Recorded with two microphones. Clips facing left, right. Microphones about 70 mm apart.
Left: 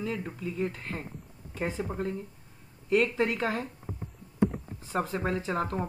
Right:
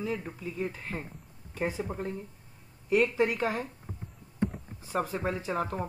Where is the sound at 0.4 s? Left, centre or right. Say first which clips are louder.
Left 2 dB; centre.